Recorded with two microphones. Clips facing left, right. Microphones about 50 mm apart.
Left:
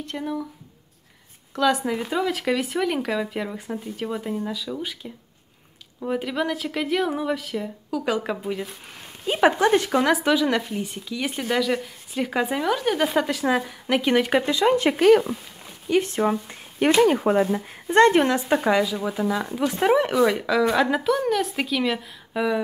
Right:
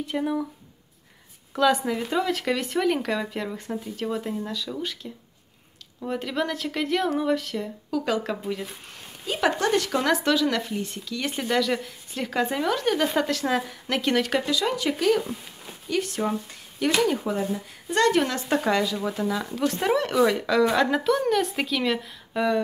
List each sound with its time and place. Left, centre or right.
0.0 s speech: centre
1.5 s speech: centre
9.2 s speech: left
14.4 s speech: left
15.9 s speech: left
17.0 s speech: left
17.8 s speech: left
18.4 s speech: centre
20.2 s speech: centre